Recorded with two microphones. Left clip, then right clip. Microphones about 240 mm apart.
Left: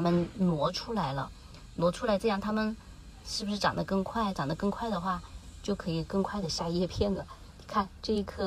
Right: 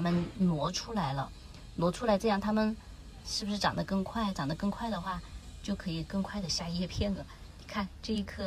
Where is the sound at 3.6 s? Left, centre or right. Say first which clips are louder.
Left 3 dB; centre.